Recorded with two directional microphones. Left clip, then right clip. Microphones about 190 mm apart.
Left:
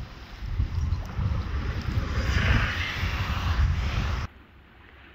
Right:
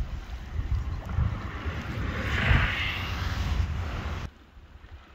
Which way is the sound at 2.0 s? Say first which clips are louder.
Right 1 dB; 50° left (ahead or behind).